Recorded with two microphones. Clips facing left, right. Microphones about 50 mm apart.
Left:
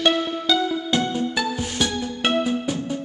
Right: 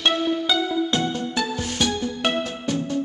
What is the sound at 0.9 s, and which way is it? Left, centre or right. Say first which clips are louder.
Music: left 2 dB; centre.